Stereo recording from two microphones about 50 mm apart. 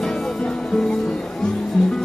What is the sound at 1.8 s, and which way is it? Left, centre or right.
Music, centre.